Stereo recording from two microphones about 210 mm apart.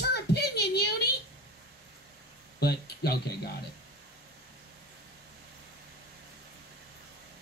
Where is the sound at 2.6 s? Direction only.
50° left (ahead or behind).